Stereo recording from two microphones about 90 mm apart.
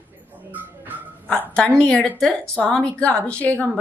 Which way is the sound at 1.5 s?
10° left (ahead or behind).